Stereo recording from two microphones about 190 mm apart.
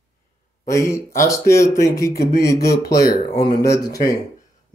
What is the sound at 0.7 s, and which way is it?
Speech, 15° left (ahead or behind).